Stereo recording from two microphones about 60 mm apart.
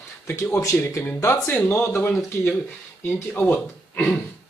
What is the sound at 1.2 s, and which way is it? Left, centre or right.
Speech, left.